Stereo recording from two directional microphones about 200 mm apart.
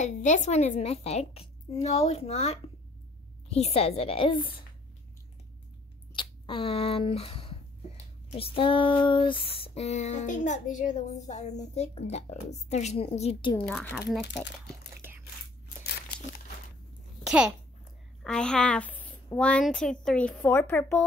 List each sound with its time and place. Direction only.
0.0 s female singing: 40° left (ahead or behind)
6.1 s speech: 25° left (ahead or behind)
8.4 s female singing: 25° left (ahead or behind)
13.7 s speech: 10° left (ahead or behind)
15.0 s biting: 10° right (ahead or behind)
17.2 s a sound: 5° right (ahead or behind)
18.2 s a woman's voice: 5° left (ahead or behind)